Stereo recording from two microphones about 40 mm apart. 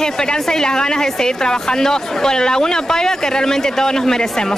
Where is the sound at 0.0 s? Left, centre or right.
Centre.